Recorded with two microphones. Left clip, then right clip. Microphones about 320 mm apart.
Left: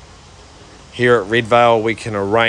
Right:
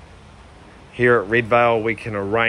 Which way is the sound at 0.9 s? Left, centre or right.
Centre.